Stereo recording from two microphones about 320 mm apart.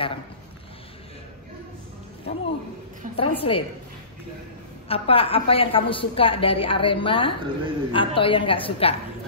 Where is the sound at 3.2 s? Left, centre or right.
Centre.